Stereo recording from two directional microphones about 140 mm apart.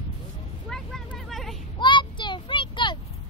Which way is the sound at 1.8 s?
35° left (ahead or behind).